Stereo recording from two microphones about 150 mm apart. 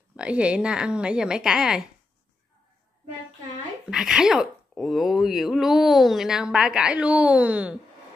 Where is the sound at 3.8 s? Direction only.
5° right (ahead or behind).